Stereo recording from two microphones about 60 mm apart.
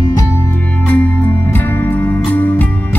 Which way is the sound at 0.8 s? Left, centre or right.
Left.